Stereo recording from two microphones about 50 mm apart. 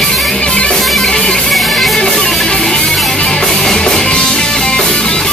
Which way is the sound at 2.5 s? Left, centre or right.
Centre.